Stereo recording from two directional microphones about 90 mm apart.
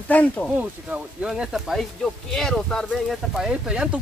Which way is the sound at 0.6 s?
10° right (ahead or behind).